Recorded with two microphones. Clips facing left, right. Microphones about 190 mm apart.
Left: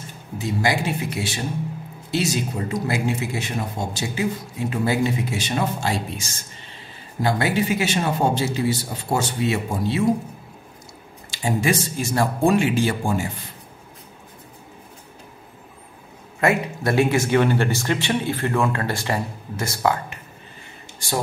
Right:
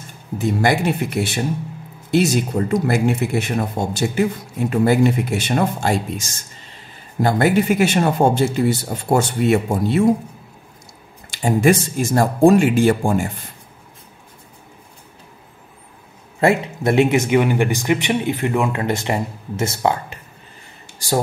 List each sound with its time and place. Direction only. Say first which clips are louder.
0.4 s a man's voice: right 5 dB; 55° right (ahead or behind)
11.2 s speech: right 6 dB; 50° right (ahead or behind)
16.3 s speech: right 4 dB; 25° right (ahead or behind)